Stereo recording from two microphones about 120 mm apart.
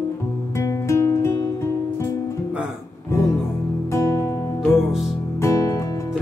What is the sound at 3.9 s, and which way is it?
Music, 25° left (ahead or behind).